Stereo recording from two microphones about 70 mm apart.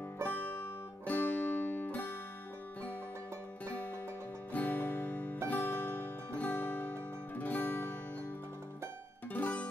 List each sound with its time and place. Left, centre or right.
1.0 s music: left
3.6 s music: left
9.3 s music: left